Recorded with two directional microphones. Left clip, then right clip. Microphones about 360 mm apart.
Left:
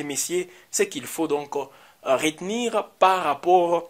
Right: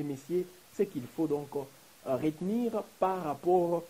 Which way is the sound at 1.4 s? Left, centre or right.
Left.